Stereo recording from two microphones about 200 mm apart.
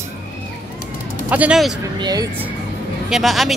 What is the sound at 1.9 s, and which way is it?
Speech, 20° right (ahead or behind).